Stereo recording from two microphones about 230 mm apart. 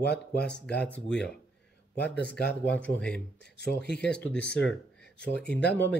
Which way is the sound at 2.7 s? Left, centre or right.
Centre.